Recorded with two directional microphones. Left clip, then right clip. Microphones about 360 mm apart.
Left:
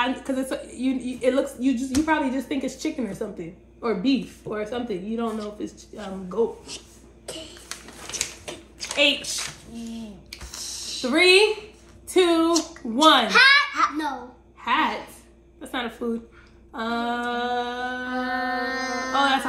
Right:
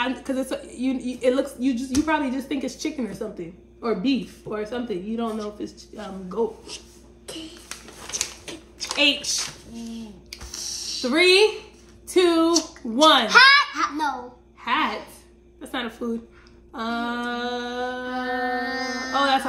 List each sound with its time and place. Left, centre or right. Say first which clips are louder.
0.0 s a woman's voice: left 1 dB; centre
7.2 s a sound: even; centre
12.1 s a woman's voice: right 1 dB; centre